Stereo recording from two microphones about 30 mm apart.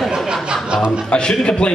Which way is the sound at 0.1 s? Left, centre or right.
Right.